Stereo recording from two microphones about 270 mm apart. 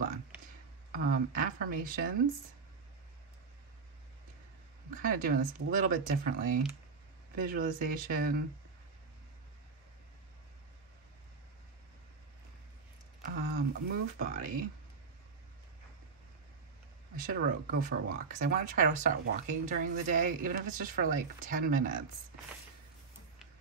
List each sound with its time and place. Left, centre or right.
0.9 s speech: right
4.9 s speech: right
13.2 s speech: right
17.2 s speech: right